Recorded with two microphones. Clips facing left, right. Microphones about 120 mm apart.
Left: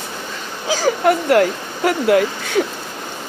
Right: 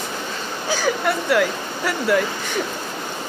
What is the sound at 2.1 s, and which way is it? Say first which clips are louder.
Speech: left 3 dB; 85° left.